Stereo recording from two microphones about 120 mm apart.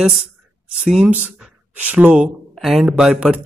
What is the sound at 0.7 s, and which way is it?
Speech, centre (ahead or behind).